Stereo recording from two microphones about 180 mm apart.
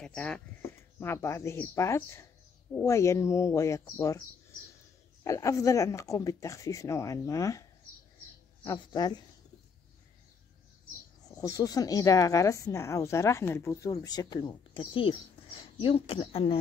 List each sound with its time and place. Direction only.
0.0 s speech: 5° left (ahead or behind)
5.2 s speech: 15° left (ahead or behind)
8.9 s speech: 25° left (ahead or behind)
11.2 s speech: 20° left (ahead or behind)